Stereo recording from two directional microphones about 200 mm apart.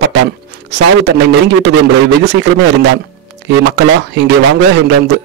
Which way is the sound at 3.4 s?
60° right (ahead or behind).